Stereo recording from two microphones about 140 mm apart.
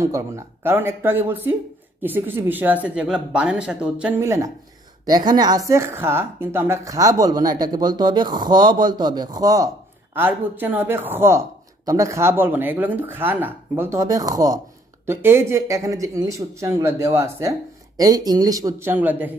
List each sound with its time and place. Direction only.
0.0 s speech: 20° right (ahead or behind); by 4.1 s 5° right (ahead or behind)
4.2 s speech: 20° right (ahead or behind)
5.0 s speech: 30° right (ahead or behind)
10.1 s speech: 15° right (ahead or behind)